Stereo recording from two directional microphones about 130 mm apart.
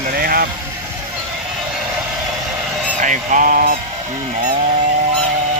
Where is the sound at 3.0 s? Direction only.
80° right.